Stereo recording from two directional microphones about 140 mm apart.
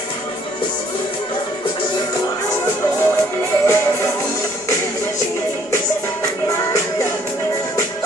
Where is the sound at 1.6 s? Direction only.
30° left (ahead or behind).